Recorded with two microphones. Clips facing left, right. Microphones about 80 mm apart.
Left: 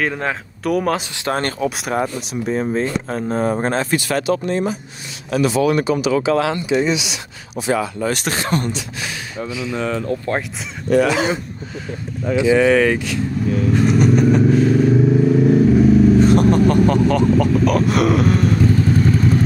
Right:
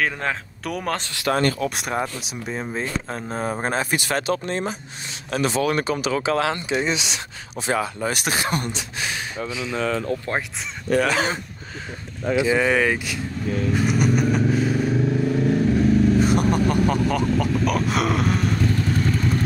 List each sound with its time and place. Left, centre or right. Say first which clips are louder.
0.0 s speech: left 3 dB; centre
1.3 s speech: left 1 dB; left
1.6 s speech: left 4 dB; centre
4.1 s speech: left 5 dB; right
8.0 s speech: left 3 dB; centre
9.4 s speech: left 3 dB; left
11.1 s speech: left 4 dB; right
12.5 s speech: left 6 dB; centre
13.7 s vehicle: left 6 dB; centre
16.3 s a sound: left 6 dB; centre